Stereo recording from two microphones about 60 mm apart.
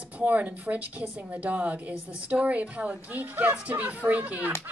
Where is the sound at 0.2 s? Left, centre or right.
Right.